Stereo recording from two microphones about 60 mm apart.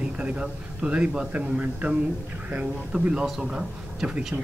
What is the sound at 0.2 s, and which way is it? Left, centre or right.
A man's voice, right.